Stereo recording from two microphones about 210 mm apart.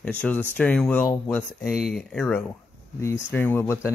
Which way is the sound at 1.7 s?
5° right (ahead or behind).